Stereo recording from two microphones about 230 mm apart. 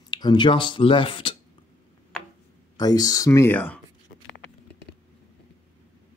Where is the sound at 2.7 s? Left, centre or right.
Centre.